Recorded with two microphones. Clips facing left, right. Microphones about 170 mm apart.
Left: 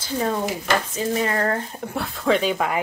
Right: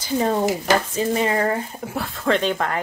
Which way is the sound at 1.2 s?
10° right (ahead or behind).